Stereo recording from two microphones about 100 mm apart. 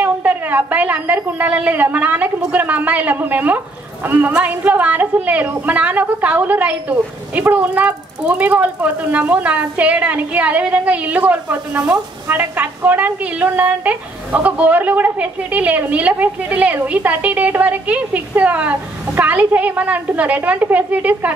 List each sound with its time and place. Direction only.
0.0 s a woman's voice: 15° right (ahead or behind)